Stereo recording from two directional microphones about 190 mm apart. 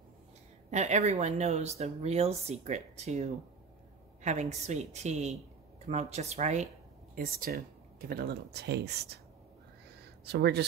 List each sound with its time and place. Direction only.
0.7 s speech: 40° right (ahead or behind)
7.2 s speech: 50° right (ahead or behind)
10.2 s speech: 60° right (ahead or behind)